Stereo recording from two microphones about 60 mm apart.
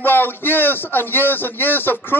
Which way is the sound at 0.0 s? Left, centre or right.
Left.